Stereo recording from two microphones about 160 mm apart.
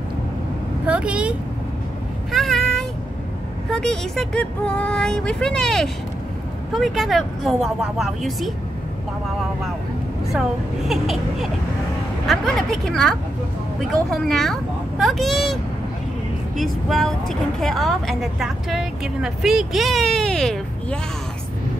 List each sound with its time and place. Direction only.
0.8 s vehicle: 10° right (ahead or behind)
2.3 s a sound: centre (ahead or behind)
3.7 s a woman's voice: 5° left (ahead or behind)
10.9 s a woman's voice: centre (ahead or behind)